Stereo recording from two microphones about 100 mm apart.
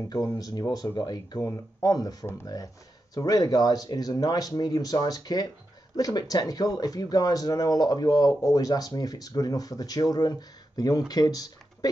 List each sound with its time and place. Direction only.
0.4 s speech: 40° left (ahead or behind)